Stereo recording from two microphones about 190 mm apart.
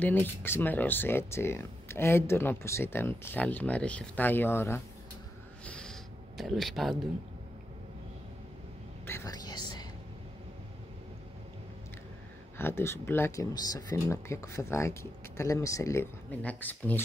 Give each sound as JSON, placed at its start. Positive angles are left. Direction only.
{"t": 0.0, "sound": "speech", "side_deg": 10}
{"t": 5.7, "sound": "a sound", "side_deg": 5}
{"t": 9.0, "sound": "whispering", "side_deg": 15}
{"t": 12.5, "sound": "speech", "side_deg": 10}